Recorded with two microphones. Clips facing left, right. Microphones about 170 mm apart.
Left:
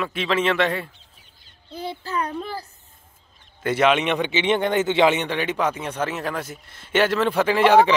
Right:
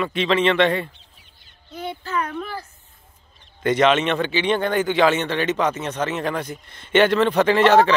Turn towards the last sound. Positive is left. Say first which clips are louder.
# right 1 dB
turn(degrees=10)  # may be behind; listen again after turning